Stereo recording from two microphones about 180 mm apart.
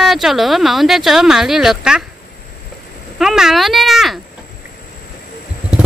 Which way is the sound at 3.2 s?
Centre (ahead or behind).